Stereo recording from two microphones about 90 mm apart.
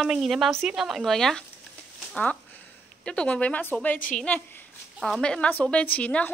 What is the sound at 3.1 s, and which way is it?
A woman's voice, 10° left (ahead or behind).